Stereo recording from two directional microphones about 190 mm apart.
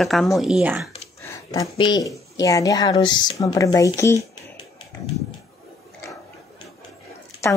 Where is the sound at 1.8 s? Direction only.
20° left (ahead or behind).